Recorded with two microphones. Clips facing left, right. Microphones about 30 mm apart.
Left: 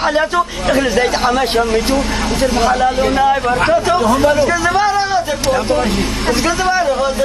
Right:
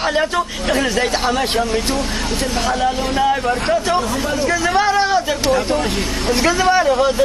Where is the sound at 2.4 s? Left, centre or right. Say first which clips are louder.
Left 7 dB; left.